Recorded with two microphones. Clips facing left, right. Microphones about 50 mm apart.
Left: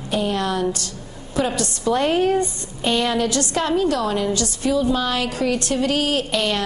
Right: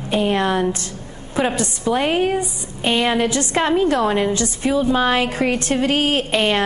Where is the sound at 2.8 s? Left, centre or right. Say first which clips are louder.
Right 2 dB; right.